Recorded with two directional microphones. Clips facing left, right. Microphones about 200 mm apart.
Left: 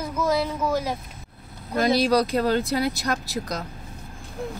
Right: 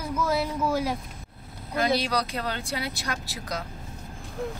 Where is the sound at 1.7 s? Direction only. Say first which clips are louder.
Left 6 dB; 40° left (ahead or behind).